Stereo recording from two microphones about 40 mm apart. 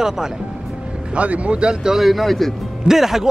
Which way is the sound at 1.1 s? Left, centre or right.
Right.